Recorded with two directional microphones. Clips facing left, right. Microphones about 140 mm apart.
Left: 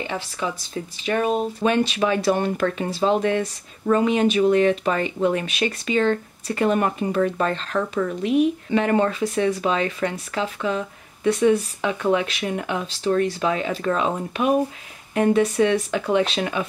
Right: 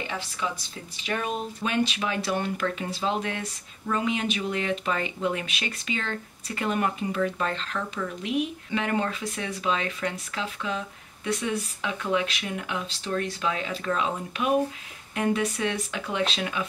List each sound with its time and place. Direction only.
1.0 s speech: 40° left (ahead or behind)